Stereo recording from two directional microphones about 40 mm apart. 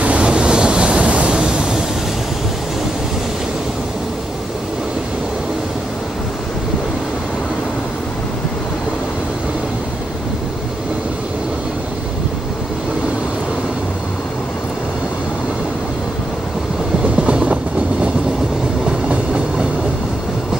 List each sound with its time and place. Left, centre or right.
0.0 s vehicle: right
17.2 s train: right
18.9 s train: right